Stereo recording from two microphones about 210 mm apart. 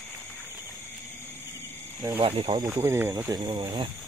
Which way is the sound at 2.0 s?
20° right (ahead or behind).